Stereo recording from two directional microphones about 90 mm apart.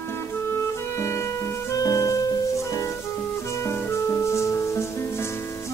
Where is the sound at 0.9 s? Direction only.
30° left (ahead or behind).